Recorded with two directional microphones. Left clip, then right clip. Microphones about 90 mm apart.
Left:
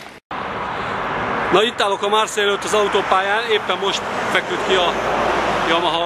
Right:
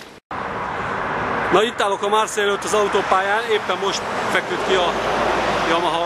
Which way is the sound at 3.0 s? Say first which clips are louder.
Left 1 dB; 5° right (ahead or behind).